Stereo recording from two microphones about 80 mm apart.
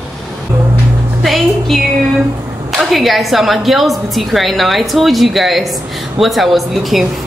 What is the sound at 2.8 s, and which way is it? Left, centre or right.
A woman's voice, centre.